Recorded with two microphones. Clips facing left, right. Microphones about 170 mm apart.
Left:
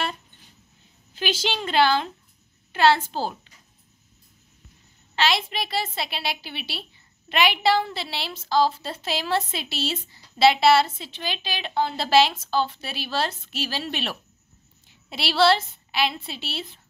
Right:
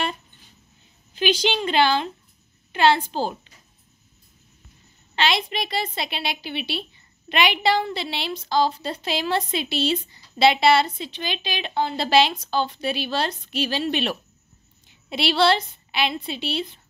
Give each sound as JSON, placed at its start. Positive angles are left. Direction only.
{"t": 1.1, "sound": "a woman's voice", "side_deg": 5}
{"t": 5.1, "sound": "a woman's voice", "side_deg": 5}